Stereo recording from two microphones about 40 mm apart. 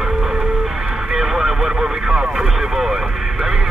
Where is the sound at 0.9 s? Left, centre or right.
Centre.